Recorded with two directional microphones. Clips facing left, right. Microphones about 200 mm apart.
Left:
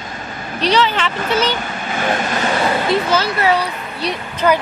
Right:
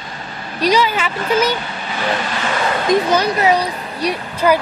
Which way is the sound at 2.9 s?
15° right (ahead or behind).